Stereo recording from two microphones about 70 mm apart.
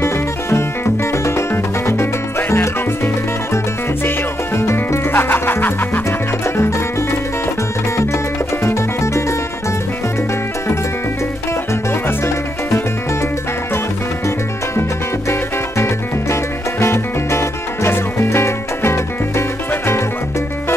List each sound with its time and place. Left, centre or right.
0.0 s music: left
4.6 s music: left
8.6 s music: left
16.8 s music: left